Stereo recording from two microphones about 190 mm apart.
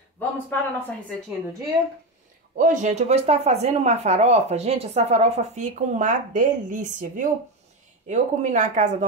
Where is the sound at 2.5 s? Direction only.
40° right (ahead or behind).